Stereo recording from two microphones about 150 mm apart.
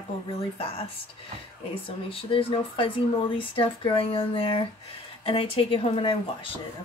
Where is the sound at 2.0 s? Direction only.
35° left (ahead or behind).